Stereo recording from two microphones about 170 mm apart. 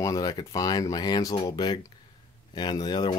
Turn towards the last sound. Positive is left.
turn(degrees=25)  # may be behind; listen again after turning